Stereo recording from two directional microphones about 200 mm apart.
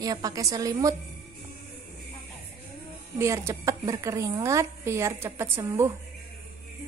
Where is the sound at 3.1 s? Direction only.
15° right (ahead or behind).